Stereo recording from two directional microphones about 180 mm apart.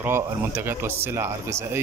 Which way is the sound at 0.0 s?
10° right (ahead or behind).